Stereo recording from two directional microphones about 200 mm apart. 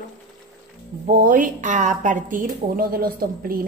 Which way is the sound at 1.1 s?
45° right (ahead or behind).